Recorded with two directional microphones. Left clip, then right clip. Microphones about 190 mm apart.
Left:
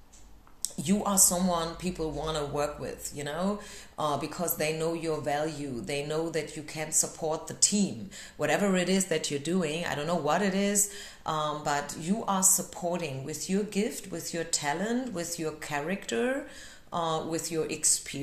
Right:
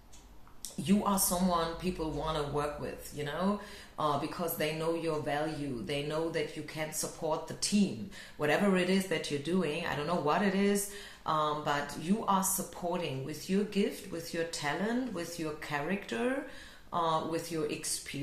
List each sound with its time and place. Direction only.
0.6 s speech: 45° left (ahead or behind)
13.5 s speech: 45° left (ahead or behind)